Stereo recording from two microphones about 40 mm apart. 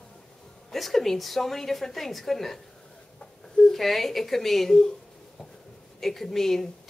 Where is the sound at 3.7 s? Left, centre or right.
Centre.